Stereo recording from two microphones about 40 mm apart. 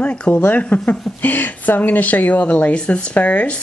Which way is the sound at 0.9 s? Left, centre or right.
Left.